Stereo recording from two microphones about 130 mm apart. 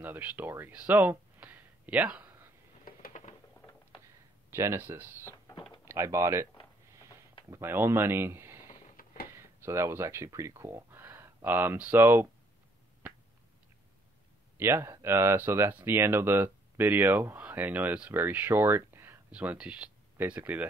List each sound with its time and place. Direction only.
0.0 s speech: 15° right (ahead or behind)
2.8 s a sound: 80° left
4.5 s speech: 20° right (ahead or behind)
9.0 s a sound: 90° left
9.3 s speech: 20° right (ahead or behind)
14.6 s speech: 20° right (ahead or behind)